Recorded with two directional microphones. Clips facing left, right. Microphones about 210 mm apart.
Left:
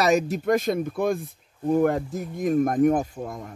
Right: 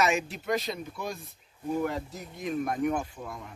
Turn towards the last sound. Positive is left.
turn(degrees=45)  # may be behind; listen again after turning